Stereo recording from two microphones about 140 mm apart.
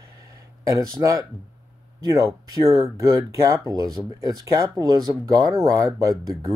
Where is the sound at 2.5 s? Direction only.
20° right (ahead or behind).